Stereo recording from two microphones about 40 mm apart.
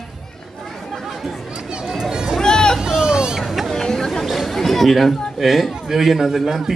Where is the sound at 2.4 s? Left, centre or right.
Centre.